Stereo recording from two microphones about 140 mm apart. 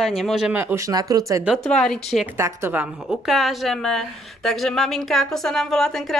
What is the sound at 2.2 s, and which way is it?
Speech, 15° right (ahead or behind).